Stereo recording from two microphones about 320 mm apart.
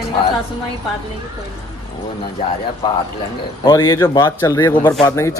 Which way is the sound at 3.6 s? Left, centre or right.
Centre.